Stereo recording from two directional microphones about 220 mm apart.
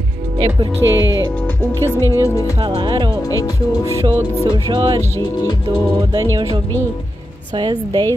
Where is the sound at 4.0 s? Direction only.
10° right (ahead or behind).